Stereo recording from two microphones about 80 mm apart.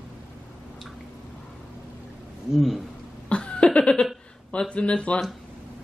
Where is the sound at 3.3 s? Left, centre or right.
Centre.